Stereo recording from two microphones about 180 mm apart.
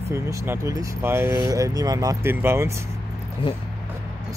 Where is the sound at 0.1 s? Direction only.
15° right (ahead or behind).